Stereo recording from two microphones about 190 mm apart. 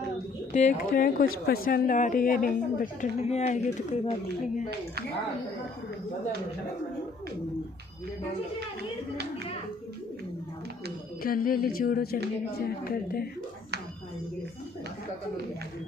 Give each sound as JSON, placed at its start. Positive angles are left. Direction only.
{"t": 0.5, "sound": "speech", "side_deg": 40}
{"t": 11.2, "sound": "speech", "side_deg": 50}